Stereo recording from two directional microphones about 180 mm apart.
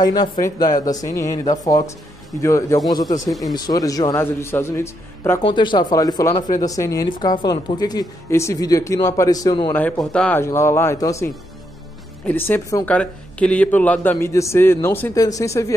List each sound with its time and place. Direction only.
0.0 s a man's voice: 20° left (ahead or behind)
3.3 s speech: centre (ahead or behind)
3.5 s a man's voice: 20° left (ahead or behind)
5.4 s speech: 25° left (ahead or behind)
10.1 s a man's voice: 5° left (ahead or behind)
12.3 s a man's voice: 10° left (ahead or behind)